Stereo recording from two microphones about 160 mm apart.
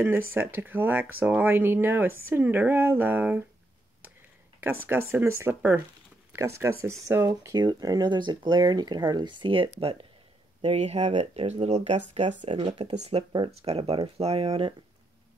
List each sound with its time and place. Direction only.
0.0 s speech: 15° right (ahead or behind)
4.6 s speech: 15° right (ahead or behind); by 12.4 s 45° right (ahead or behind)
12.4 s speech: 35° right (ahead or behind)